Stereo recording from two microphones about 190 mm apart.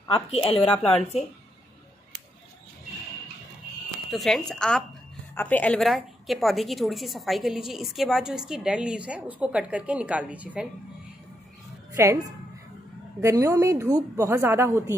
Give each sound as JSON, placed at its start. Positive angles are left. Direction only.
{"t": 0.1, "sound": "a woman's voice", "side_deg": 30}
{"t": 0.6, "sound": "a woman's voice", "side_deg": 5}
{"t": 4.1, "sound": "a woman's voice", "side_deg": 0}
{"t": 11.9, "sound": "speech", "side_deg": -15}